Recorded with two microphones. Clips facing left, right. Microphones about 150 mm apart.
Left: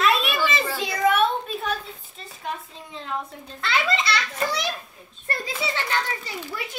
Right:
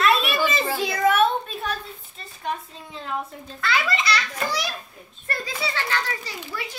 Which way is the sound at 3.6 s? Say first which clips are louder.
Even; 25° left (ahead or behind).